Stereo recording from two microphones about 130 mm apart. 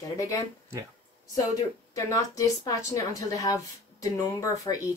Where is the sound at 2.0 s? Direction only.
25° left (ahead or behind).